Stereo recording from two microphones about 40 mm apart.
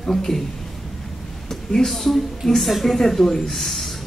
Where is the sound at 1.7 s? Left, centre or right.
Centre.